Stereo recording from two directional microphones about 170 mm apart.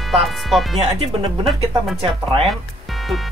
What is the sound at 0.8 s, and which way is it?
Speech, 35° right (ahead or behind).